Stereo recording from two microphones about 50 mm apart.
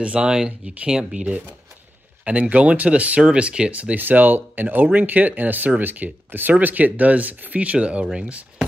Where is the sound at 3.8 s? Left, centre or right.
Right.